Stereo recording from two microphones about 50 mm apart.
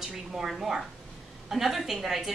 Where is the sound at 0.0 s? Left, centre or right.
Centre.